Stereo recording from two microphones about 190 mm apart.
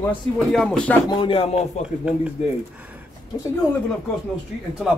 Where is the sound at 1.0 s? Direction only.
25° left (ahead or behind).